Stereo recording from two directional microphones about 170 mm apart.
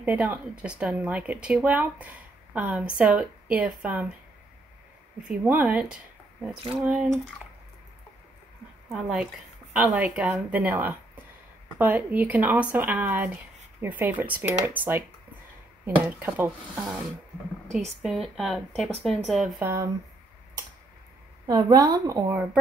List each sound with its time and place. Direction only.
0.0 s speech: 10° right (ahead or behind)
5.4 s speech: 5° right (ahead or behind)
8.8 s speech: 5° right (ahead or behind)
19.6 s speech: 15° right (ahead or behind)
21.5 s a woman's voice: 20° right (ahead or behind)